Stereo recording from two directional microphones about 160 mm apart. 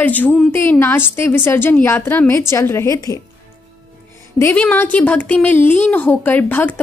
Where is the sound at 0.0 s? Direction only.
10° left (ahead or behind).